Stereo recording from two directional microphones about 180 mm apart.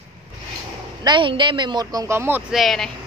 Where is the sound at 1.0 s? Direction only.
25° right (ahead or behind).